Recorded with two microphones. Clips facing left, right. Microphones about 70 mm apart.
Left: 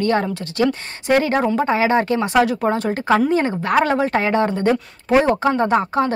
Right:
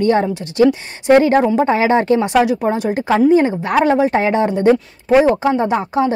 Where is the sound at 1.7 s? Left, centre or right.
Right.